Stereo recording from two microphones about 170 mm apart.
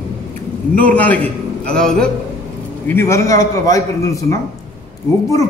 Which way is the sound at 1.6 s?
5° left (ahead or behind).